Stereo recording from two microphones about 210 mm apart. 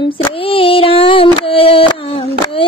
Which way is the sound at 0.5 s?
25° left (ahead or behind).